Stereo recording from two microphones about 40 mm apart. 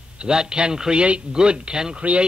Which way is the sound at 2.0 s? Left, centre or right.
Right.